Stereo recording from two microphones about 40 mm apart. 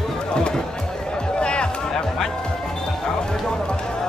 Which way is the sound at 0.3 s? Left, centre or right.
Left.